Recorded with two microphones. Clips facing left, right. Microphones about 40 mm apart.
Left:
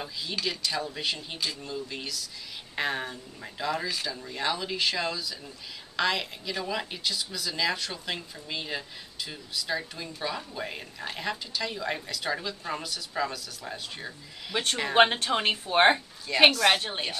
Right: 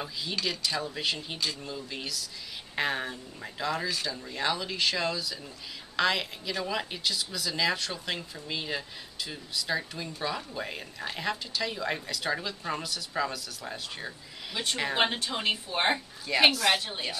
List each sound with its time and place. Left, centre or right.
0.0 s speech: centre
14.5 s a woman's voice: left
16.3 s speech: centre